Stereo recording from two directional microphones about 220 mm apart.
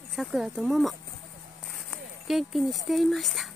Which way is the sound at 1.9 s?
Centre (ahead or behind).